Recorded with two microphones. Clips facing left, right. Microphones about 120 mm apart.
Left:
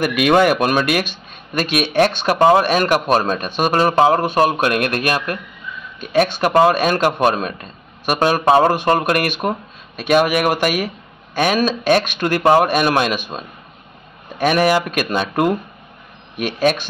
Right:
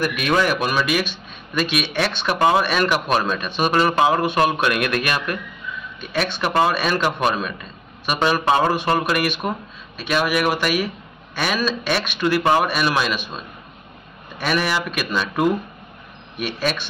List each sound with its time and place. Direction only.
0.0 s speech: 65° left (ahead or behind); by 16.8 s 50° left (ahead or behind)